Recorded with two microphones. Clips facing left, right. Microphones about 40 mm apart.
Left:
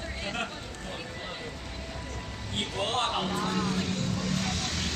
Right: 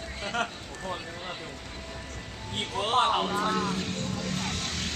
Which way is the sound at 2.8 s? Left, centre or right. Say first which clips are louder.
Right 5 dB; centre.